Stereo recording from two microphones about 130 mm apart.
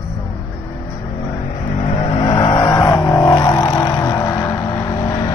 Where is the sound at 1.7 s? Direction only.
40° left (ahead or behind).